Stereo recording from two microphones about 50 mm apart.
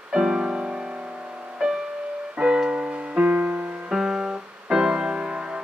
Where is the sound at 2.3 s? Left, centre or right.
Centre.